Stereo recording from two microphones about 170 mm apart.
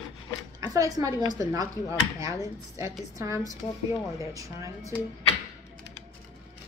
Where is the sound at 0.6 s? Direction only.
20° right (ahead or behind).